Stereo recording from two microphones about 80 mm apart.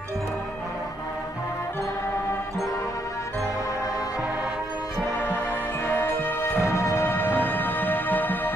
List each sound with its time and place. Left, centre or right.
5.9 s music: left
7.1 s music: left